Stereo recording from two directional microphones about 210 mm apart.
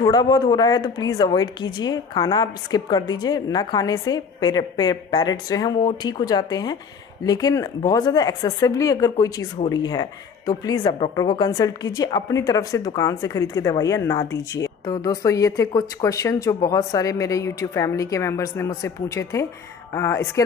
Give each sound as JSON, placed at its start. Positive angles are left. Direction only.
{"t": 0.0, "sound": "a woman's voice", "side_deg": 20}